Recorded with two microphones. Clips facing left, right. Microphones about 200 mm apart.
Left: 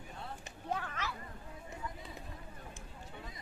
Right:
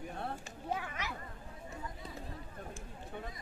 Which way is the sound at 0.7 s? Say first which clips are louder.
Even; 10° right (ahead or behind).